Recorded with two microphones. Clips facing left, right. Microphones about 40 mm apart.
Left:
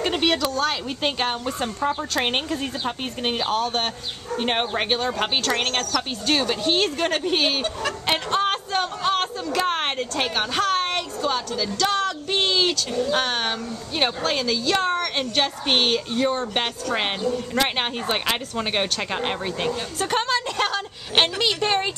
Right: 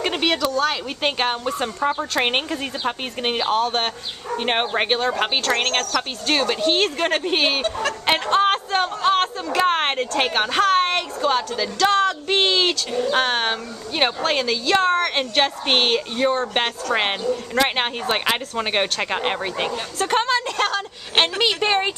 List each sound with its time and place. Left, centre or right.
0.0 s speech: centre
1.0 s a woman's voice: centre
21.4 s speech: centre